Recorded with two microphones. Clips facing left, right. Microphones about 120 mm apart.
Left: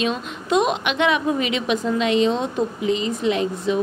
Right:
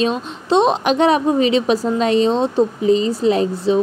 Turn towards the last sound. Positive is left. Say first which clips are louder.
# right 5 dB
turn(degrees=-35)  # may be behind; listen again after turning